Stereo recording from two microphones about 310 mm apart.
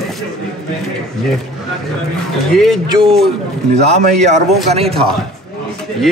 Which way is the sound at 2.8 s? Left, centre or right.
Centre.